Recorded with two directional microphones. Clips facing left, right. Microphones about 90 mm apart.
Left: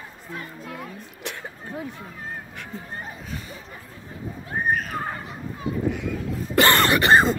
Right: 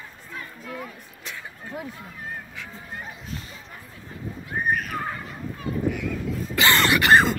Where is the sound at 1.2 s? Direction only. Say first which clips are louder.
Left 3 dB; 65° left (ahead or behind).